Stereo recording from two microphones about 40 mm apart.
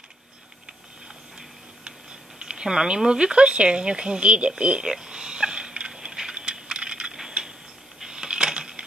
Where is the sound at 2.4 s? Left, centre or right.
Centre.